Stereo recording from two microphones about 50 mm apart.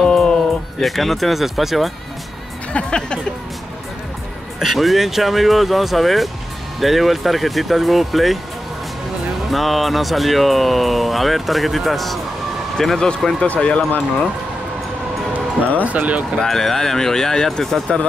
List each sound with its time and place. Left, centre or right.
0.0 s music: centre
2.7 s music: centre
4.6 s speech: centre
9.5 s speech: centre
13.5 s music: left
15.8 s speech: right
16.3 s speech: centre